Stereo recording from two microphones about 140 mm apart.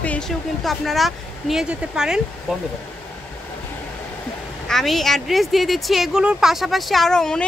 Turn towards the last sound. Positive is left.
turn(degrees=5)  # may be behind; listen again after turning